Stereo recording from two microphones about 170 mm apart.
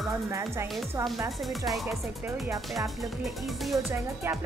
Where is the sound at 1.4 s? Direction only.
Centre (ahead or behind).